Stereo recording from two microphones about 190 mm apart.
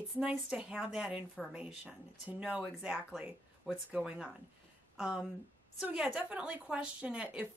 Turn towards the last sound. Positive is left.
turn(degrees=-5)  # may be behind; listen again after turning